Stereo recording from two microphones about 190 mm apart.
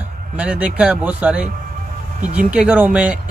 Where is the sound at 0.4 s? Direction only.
5° right (ahead or behind).